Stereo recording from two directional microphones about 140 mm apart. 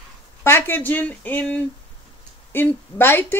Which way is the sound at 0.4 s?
15° left (ahead or behind).